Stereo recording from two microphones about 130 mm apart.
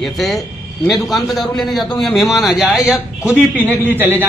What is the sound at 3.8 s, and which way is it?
Speech, 15° right (ahead or behind).